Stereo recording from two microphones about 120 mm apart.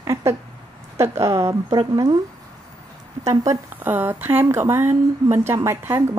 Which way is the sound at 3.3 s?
20° right (ahead or behind).